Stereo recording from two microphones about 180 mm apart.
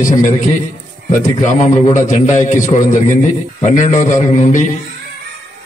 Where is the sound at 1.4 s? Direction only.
45° left (ahead or behind).